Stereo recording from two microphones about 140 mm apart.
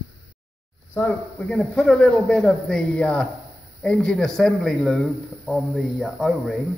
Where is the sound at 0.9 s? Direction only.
10° left (ahead or behind).